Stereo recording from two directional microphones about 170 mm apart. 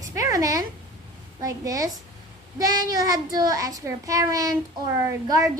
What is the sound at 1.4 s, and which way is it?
A child's voice, 20° right (ahead or behind).